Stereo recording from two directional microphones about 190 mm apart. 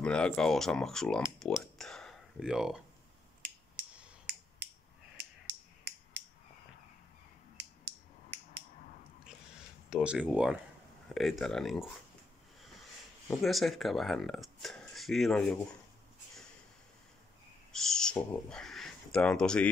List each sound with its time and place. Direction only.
0.0 s speech: 5° left (ahead or behind)
7.5 s a sound: 60° right (ahead or behind)
9.2 s a sound: 5° right (ahead or behind)
11.1 s speech: centre (ahead or behind)
13.3 s speech: centre (ahead or behind)
17.7 s speech: 5° left (ahead or behind)